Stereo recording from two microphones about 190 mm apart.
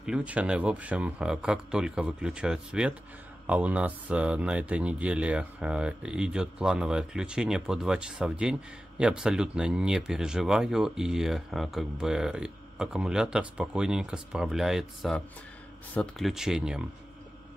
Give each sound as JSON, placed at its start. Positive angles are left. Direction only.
{"t": 0.0, "sound": "speech", "side_deg": -5}